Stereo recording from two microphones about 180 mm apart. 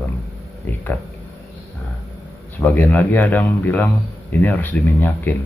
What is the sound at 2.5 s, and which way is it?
Speech, 10° left (ahead or behind).